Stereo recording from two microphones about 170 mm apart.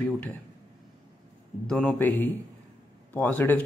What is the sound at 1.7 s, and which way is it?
Speech, 5° left (ahead or behind).